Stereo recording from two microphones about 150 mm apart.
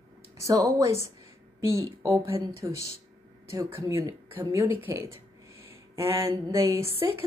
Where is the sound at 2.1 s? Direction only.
15° right (ahead or behind).